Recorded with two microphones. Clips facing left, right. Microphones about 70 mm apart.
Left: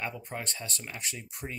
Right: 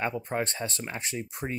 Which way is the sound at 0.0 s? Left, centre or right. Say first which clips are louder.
Right 7 dB; right.